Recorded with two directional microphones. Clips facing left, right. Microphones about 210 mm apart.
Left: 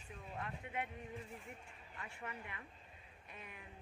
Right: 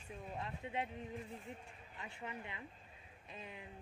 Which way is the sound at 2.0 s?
25° right (ahead or behind).